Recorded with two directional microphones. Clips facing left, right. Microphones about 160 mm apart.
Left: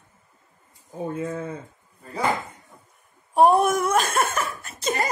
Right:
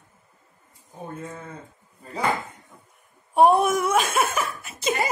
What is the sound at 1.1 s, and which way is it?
Speech, 90° left.